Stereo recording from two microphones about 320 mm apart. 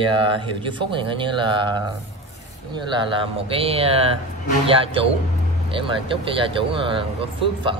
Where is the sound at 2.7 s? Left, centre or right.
Centre.